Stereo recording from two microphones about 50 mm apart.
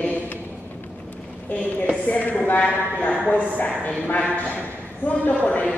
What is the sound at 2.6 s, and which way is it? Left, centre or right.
A man's voice, left.